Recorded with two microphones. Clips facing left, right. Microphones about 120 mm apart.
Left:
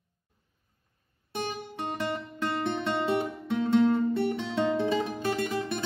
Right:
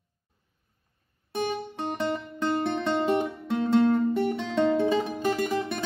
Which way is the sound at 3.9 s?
10° right (ahead or behind).